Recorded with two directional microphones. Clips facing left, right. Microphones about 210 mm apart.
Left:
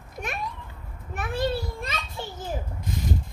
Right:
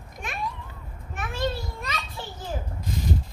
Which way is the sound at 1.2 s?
35° left (ahead or behind).